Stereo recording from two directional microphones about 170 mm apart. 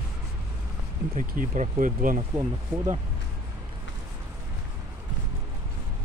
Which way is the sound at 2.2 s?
25° right (ahead or behind).